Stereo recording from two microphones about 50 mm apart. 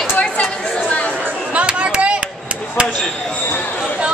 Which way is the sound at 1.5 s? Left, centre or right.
Right.